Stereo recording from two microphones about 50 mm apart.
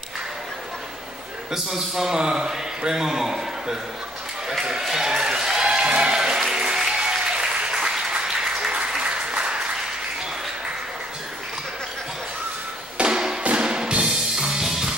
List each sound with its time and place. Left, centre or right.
1.5 s a man's voice: centre
4.5 s a sound: centre
6.5 s applause: centre
12.9 s music: right